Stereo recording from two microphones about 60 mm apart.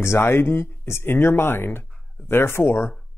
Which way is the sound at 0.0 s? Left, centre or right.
Left.